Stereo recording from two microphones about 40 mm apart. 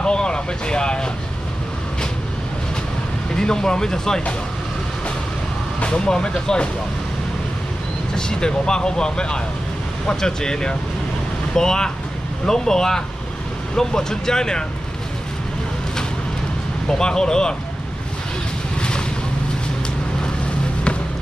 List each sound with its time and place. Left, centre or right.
0.0 s vehicle: left
3.3 s speech: centre
5.8 s speech: left
8.1 s speech: centre
17.0 s speech: centre
18.8 s vehicle: left